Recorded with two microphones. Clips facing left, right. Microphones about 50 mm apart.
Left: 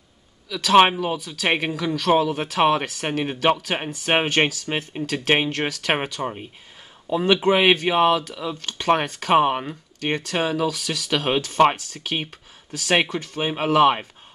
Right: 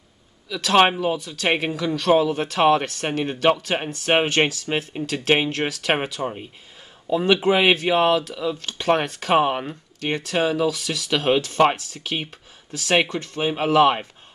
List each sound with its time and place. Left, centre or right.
0.5 s speech: centre